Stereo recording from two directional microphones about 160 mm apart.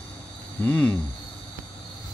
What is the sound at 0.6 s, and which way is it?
Speech, 10° left (ahead or behind).